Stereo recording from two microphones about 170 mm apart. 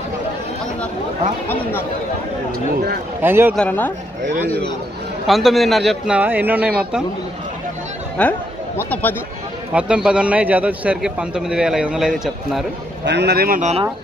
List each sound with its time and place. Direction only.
3.2 s a man's voice: 10° right (ahead or behind)
3.5 s speech: 10° left (ahead or behind)
4.2 s speech: 45° right (ahead or behind)
5.2 s speech: centre (ahead or behind)
8.2 s speech: 10° left (ahead or behind)
9.8 s speech: 5° right (ahead or behind)
13.0 s a man's voice: 80° right
13.6 s speech: 40° right (ahead or behind)